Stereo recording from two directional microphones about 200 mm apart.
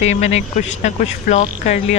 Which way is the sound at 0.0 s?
35° left (ahead or behind).